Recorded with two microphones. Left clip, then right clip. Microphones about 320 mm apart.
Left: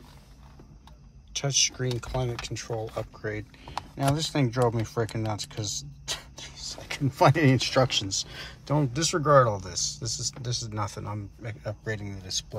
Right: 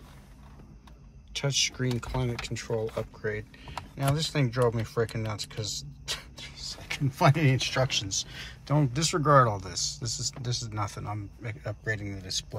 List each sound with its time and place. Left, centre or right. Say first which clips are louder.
1.3 s speech: left 2 dB; centre
8.7 s speech: left 1 dB; centre